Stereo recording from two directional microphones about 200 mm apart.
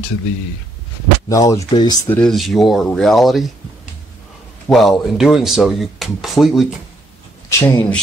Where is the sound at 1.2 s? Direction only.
15° left (ahead or behind).